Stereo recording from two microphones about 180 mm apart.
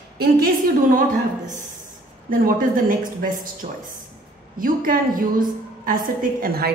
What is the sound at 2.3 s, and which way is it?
A woman's voice, 50° right (ahead or behind).